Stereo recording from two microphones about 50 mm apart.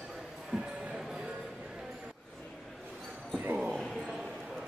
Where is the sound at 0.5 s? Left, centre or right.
Right.